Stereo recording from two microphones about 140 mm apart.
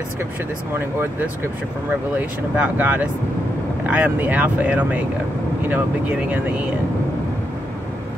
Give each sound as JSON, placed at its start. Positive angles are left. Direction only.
{"t": 0.7, "sound": "speech", "side_deg": -15}